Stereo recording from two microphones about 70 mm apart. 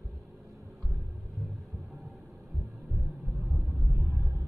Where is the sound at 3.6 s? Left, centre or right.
Right.